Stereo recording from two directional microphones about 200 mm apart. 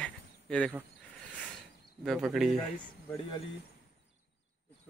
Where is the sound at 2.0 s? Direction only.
Centre (ahead or behind).